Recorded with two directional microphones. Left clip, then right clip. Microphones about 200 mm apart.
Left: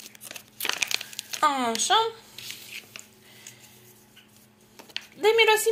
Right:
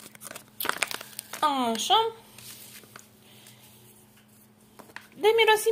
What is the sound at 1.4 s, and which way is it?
Speech, 15° right (ahead or behind).